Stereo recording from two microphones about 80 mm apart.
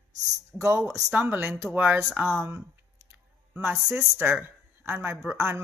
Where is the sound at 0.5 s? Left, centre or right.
Left.